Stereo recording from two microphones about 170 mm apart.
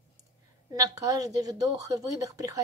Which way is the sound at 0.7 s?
20° right (ahead or behind).